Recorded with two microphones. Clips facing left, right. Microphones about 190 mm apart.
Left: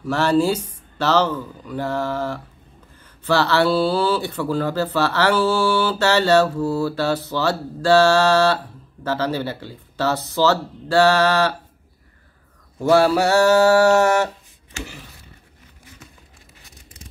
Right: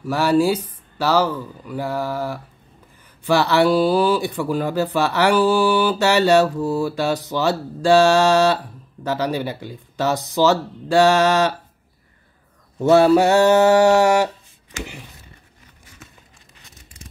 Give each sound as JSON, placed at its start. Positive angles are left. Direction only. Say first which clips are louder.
{"t": 0.0, "sound": "speech", "louder": "right 1 dB", "side_deg": -10}
{"t": 12.8, "sound": "speech", "louder": "right 3 dB", "side_deg": -20}